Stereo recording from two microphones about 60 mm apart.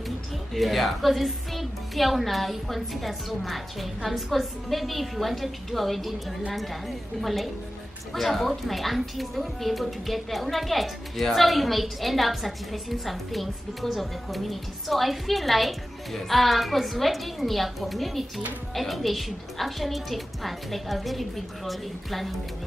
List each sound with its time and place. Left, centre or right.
0.6 s a woman's voice: centre